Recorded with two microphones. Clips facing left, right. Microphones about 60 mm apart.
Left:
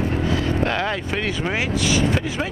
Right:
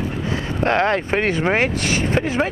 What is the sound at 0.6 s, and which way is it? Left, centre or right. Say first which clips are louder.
Speech: right 5 dB; right.